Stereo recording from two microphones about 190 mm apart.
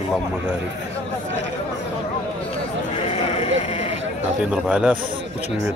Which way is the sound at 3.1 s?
35° left (ahead or behind).